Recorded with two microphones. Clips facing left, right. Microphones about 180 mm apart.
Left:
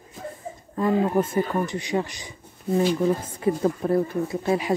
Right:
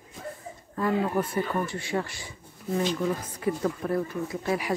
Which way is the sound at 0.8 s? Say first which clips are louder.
Left 4 dB; 20° left (ahead or behind).